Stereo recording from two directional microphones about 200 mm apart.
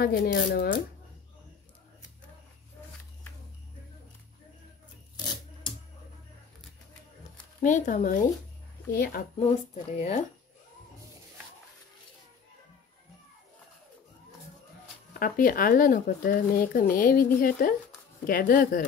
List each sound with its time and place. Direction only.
0.0 s speech: 50° left (ahead or behind)
5.1 s filing: 20° left (ahead or behind)
7.6 s speech: 40° left (ahead or behind)
9.4 s speech: 30° left (ahead or behind)
15.1 s speech: 45° left (ahead or behind)